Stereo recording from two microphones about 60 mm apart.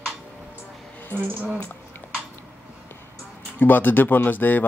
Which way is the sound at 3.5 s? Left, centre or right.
Left.